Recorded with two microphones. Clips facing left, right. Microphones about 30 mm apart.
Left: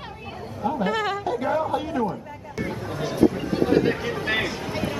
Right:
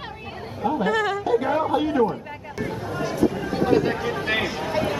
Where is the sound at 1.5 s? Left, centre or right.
Centre.